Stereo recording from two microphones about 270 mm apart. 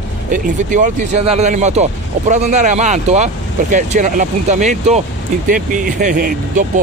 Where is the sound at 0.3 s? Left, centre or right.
Right.